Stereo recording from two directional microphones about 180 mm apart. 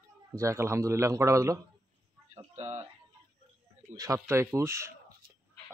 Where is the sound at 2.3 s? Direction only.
35° right (ahead or behind).